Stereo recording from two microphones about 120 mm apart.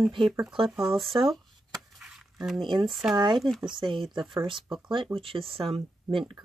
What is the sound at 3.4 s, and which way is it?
Speech, centre (ahead or behind).